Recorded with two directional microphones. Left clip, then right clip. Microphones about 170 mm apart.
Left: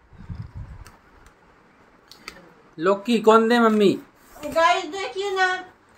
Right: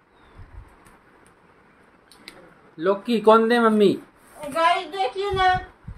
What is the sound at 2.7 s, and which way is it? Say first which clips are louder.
Speech: left 1 dB; 20° left (ahead or behind).